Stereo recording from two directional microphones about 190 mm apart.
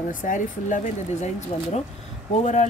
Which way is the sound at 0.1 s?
45° left (ahead or behind).